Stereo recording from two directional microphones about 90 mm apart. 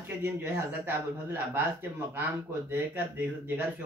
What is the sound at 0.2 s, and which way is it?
Speech, 20° right (ahead or behind).